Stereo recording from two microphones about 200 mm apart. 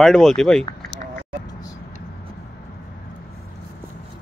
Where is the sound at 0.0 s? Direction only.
Centre (ahead or behind).